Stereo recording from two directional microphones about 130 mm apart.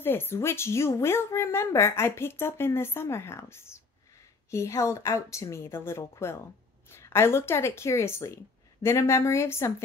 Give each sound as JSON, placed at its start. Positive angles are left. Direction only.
{"t": 0.0, "sound": "a woman's voice", "side_deg": 15}